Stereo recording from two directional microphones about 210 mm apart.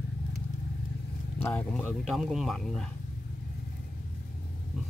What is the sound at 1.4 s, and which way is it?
Speech, 10° left (ahead or behind).